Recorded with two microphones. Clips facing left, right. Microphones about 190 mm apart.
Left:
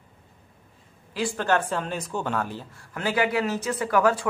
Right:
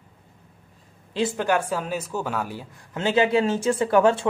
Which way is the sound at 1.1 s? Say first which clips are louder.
Right 2 dB; 20° right (ahead or behind).